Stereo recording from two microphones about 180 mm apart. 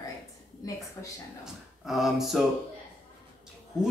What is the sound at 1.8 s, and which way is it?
Speech, centre (ahead or behind).